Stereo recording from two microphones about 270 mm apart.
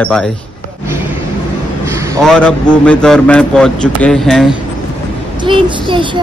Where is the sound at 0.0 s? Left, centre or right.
Centre.